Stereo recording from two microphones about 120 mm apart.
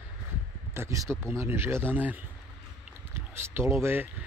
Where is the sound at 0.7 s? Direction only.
25° right (ahead or behind).